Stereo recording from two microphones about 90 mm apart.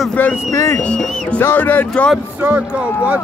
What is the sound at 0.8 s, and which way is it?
Music, 10° left (ahead or behind).